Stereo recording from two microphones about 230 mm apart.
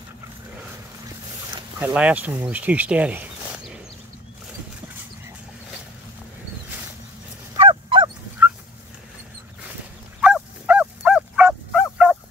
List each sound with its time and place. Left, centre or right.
1.8 s speech: centre
7.5 s fowl: right
10.2 s a sound: centre